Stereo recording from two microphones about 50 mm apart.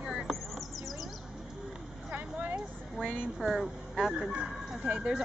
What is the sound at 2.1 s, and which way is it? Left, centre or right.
Vehicle, right.